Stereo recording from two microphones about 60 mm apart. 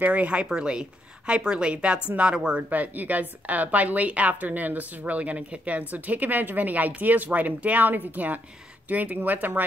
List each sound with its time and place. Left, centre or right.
0.0 s a woman's voice: right